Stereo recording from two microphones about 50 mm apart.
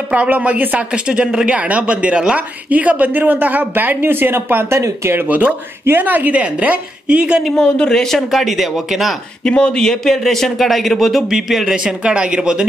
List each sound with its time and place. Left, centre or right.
0.1 s speech: right
0.9 s a man's voice: centre; by 4.6 s right
4.6 s speech: right
5.2 s a man's voice: right
7.5 s speech: centre
8.3 s speech: centre
9.4 s speech: centre
11.7 s speech: right